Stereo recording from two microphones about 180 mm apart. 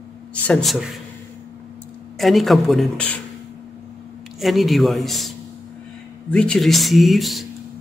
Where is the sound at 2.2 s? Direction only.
Centre (ahead or behind).